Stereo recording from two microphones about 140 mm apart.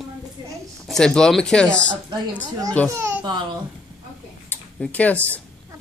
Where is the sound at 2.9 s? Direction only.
20° right (ahead or behind).